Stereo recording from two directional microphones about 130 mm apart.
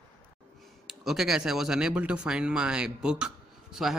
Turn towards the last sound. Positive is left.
turn(degrees=-5)  # may be behind; listen again after turning